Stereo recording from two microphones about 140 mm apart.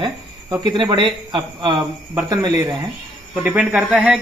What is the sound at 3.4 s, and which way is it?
Speech, 10° right (ahead or behind).